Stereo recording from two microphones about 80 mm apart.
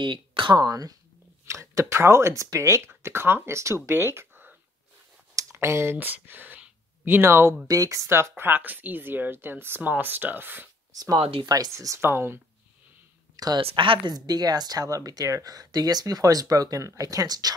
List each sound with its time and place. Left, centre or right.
0.0 s speech: right
0.6 s speech: right
1.4 s speech: right
5.3 s clicking: right
5.9 s speech: right
7.6 s speech: right
10.9 s a sound: right
11.4 s speech: right
11.7 s speech: right
13.7 s a woman's voice: right
14.1 s speech: right